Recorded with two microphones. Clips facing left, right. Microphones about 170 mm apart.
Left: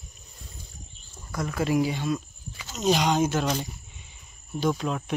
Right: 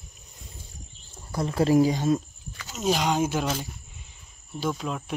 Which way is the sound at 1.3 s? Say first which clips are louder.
Right 4 dB; 30° right (ahead or behind).